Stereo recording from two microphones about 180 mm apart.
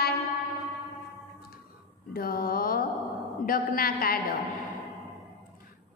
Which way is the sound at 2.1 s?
55° left (ahead or behind).